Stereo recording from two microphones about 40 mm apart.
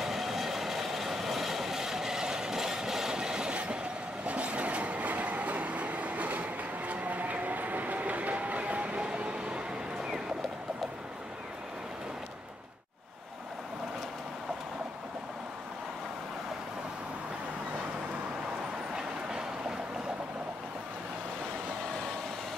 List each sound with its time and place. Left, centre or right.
0.0 s train: centre; by 3.8 s right
4.3 s train: right